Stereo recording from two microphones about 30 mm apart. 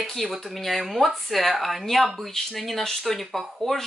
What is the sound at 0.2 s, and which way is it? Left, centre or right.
Speech, centre.